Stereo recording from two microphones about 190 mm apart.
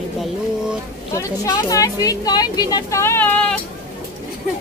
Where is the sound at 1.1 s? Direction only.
15° left (ahead or behind).